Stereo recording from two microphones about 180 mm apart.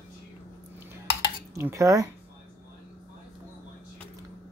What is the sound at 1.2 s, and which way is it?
Dishes, 15° right (ahead or behind).